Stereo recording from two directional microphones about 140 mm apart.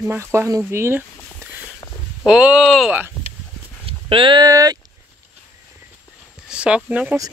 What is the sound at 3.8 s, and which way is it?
Speech, 40° right (ahead or behind).